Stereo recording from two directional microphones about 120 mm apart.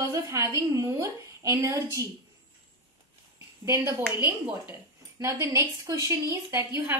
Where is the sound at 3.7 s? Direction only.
20° right (ahead or behind).